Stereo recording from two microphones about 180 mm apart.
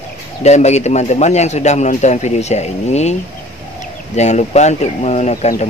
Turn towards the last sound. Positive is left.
turn(degrees=40)  # may be behind; listen again after turning